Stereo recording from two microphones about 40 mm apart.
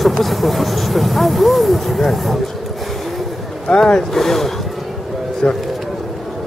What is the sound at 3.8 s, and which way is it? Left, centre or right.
Speech, centre.